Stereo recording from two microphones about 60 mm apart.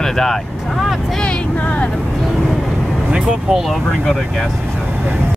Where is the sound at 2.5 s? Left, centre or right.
Centre.